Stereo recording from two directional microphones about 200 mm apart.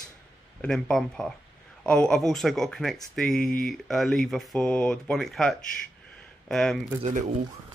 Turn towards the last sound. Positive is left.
turn(degrees=-40)  # may be behind; listen again after turning